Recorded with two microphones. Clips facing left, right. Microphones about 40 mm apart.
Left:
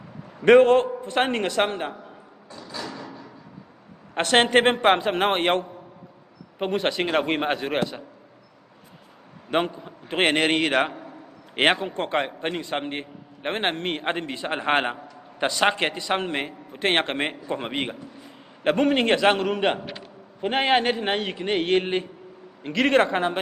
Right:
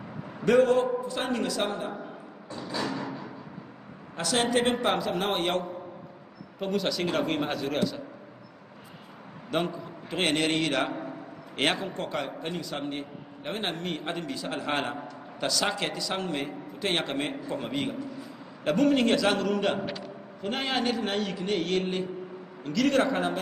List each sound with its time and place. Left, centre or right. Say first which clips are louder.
0.5 s a man's voice: left 6 dB; left
2.8 s music: right 3 dB; right
4.1 s a man's voice: left 7 dB; left
9.5 s a man's voice: left 5 dB; left